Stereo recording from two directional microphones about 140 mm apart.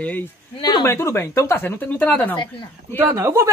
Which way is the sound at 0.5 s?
30° left (ahead or behind).